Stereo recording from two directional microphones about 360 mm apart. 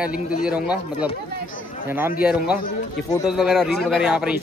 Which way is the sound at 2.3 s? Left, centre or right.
Centre.